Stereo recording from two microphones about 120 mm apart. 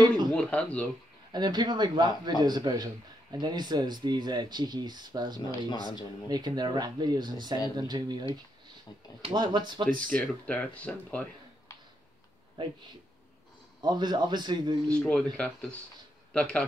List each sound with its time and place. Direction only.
0.3 s speech: 10° left (ahead or behind)
1.3 s speech: 35° right (ahead or behind)
5.7 s speech: 40° left (ahead or behind)
6.2 s speech: 35° right (ahead or behind)
9.9 s speech: 10° left (ahead or behind)
12.6 s speech: 40° right (ahead or behind)
13.7 s speech: 35° right (ahead or behind)
14.9 s speech: 10° left (ahead or behind)